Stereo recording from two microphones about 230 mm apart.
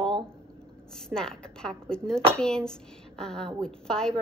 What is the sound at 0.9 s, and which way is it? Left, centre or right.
A woman's voice, centre.